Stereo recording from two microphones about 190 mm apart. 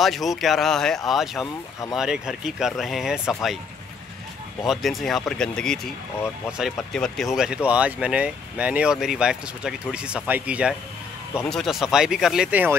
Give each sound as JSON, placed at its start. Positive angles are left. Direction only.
{"t": 0.0, "sound": "speech", "side_deg": 0}
{"t": 1.4, "sound": "speech", "side_deg": 15}
{"t": 2.0, "sound": "speech", "side_deg": -5}
{"t": 4.6, "sound": "speech", "side_deg": 0}